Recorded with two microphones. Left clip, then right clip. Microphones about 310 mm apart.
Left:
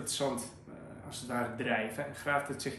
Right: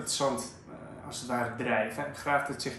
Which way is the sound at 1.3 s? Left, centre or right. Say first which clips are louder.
Right 3 dB; centre.